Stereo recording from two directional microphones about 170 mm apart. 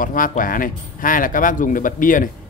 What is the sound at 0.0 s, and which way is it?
Speech, 55° left (ahead or behind).